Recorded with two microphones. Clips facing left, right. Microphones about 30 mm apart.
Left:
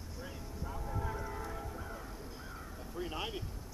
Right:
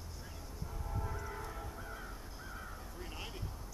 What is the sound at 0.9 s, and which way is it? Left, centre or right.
Music, centre.